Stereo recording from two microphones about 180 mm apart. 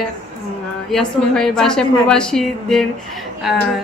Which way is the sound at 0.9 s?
5° left (ahead or behind).